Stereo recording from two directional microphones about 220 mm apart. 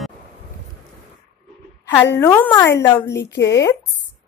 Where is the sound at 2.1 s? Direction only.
10° left (ahead or behind).